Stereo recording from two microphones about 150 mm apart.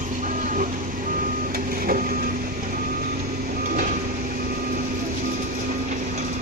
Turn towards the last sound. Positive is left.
turn(degrees=-55)  # may be behind; listen again after turning